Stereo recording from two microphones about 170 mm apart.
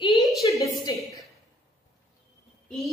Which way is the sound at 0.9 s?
20° left (ahead or behind).